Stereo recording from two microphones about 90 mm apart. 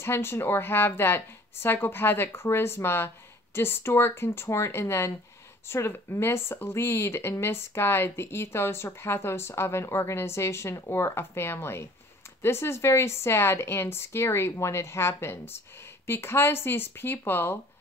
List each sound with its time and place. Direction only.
0.0 s speech: 25° left (ahead or behind)